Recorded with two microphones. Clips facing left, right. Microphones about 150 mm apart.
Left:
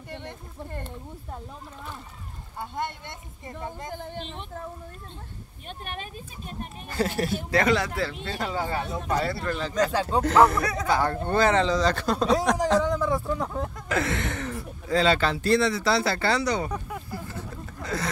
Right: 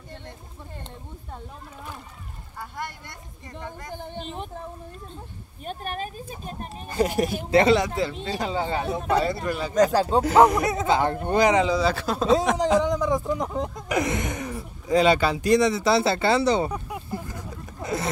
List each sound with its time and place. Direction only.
2.6 s speech: 25° left (ahead or behind)
3.9 s speech: 20° right (ahead or behind)
5.7 s speech: 40° right (ahead or behind)
6.9 s speech: 15° right (ahead or behind)
12.5 s speech: 15° right (ahead or behind)
16.7 s a sound: 15° right (ahead or behind)